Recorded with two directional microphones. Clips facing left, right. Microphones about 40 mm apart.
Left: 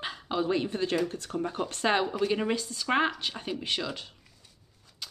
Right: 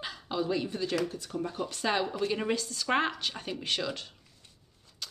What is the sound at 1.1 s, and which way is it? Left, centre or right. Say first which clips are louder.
Speech: left 3 dB; left.